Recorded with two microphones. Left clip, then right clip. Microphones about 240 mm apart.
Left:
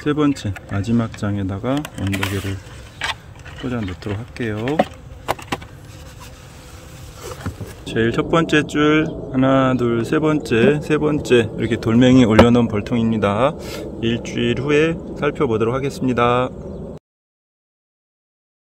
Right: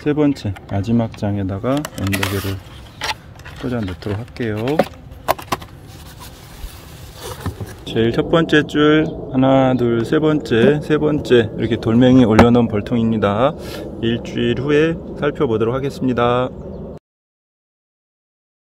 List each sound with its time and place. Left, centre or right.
0.0 s speech: centre
1.8 s speech: right
3.6 s speech: centre
4.6 s a sound: right
7.2 s bee: right
7.8 s speech: centre